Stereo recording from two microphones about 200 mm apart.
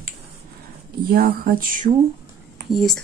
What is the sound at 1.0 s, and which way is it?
Speech, 45° right (ahead or behind).